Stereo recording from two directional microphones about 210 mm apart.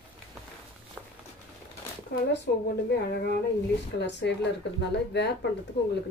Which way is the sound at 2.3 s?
55° left (ahead or behind).